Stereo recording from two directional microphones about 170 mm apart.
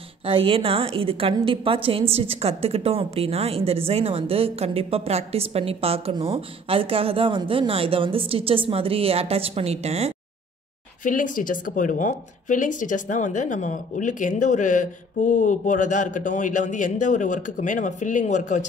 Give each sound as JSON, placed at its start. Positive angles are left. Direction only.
{"t": 0.2, "sound": "a woman's voice", "side_deg": -35}
{"t": 11.1, "sound": "speech", "side_deg": 50}